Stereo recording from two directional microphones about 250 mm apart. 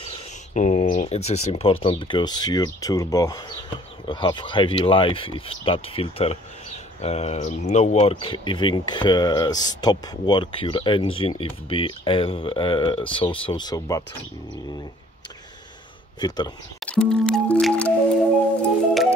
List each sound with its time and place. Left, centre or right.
0.6 s speech: left
16.2 s speech: centre
16.8 s music: centre